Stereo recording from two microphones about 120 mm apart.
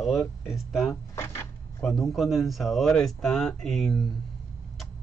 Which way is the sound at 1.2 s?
20° left (ahead or behind).